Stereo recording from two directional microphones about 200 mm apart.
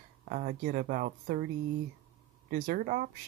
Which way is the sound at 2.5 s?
40° right (ahead or behind).